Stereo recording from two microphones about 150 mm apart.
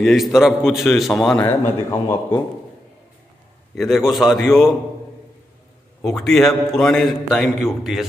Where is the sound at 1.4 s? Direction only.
15° left (ahead or behind).